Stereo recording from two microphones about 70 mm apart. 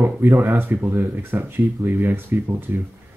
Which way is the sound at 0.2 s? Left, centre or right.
Right.